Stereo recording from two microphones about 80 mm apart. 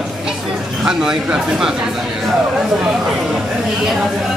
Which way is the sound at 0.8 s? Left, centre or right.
Centre.